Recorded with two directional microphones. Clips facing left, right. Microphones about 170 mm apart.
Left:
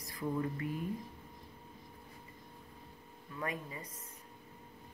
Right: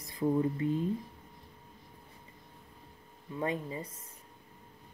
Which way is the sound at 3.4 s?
25° right (ahead or behind).